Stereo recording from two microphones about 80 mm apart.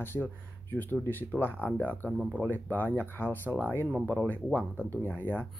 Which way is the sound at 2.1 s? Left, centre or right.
Centre.